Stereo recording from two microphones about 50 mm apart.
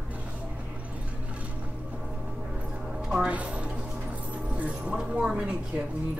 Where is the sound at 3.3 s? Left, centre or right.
Right.